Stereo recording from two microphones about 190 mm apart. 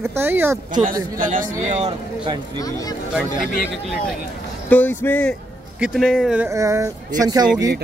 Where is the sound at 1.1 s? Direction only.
45° right (ahead or behind).